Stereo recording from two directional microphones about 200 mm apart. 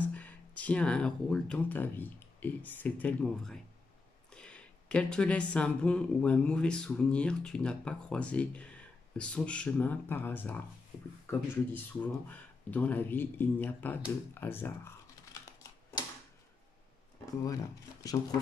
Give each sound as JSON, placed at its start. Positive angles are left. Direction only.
{"t": 0.0, "sound": "speech", "side_deg": 5}
{"t": 18.0, "sound": "speech", "side_deg": 20}